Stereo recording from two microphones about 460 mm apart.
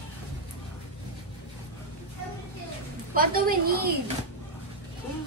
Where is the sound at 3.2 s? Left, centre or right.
Centre.